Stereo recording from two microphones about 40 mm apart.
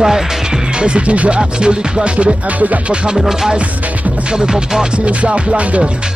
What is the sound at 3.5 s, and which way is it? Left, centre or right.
Music, right.